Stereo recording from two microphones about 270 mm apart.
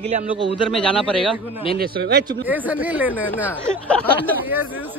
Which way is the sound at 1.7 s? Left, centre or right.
Right.